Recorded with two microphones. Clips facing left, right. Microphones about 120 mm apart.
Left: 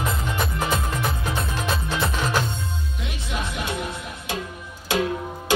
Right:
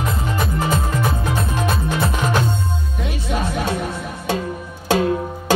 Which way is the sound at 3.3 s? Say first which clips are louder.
Right 7 dB; 45° right (ahead or behind).